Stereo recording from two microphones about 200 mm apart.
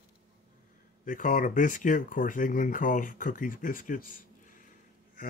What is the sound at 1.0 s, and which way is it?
Speech, 40° left (ahead or behind).